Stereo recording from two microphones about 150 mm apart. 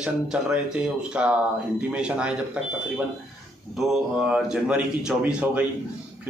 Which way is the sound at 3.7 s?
Centre (ahead or behind).